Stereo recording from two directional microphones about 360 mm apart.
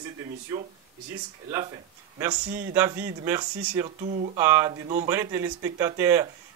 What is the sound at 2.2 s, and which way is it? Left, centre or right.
Speech, centre.